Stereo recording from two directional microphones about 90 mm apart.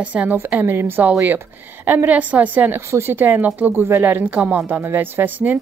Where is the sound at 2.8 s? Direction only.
30° right (ahead or behind).